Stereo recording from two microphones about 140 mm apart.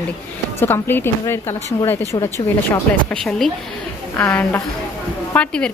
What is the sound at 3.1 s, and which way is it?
A woman's voice, 5° left (ahead or behind).